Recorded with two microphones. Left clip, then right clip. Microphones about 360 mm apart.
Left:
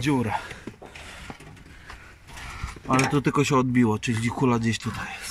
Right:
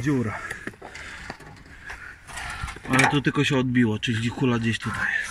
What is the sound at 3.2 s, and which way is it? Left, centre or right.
Speech, centre.